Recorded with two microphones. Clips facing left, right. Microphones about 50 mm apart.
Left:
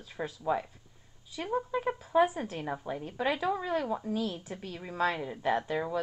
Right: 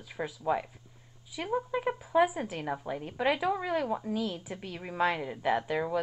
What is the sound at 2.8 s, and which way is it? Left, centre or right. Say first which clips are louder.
A woman's voice: right 2 dB; right.